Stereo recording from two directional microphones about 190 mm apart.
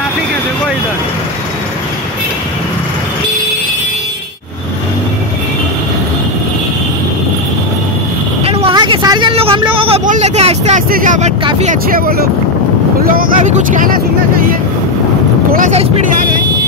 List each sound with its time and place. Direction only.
8.5 s vehicle: 30° right (ahead or behind)
10.9 s speech: 45° right (ahead or behind)
15.5 s speech: 45° right (ahead or behind)